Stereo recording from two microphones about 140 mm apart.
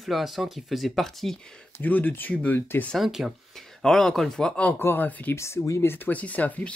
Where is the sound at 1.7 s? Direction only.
10° left (ahead or behind).